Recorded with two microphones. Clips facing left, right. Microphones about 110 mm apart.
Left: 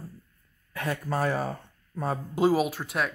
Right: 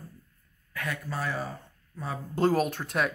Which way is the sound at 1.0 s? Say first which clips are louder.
Left 8 dB; 50° left (ahead or behind).